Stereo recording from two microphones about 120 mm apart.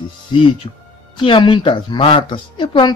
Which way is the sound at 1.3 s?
40° left (ahead or behind).